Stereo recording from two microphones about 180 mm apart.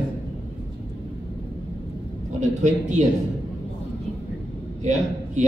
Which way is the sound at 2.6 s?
40° right (ahead or behind).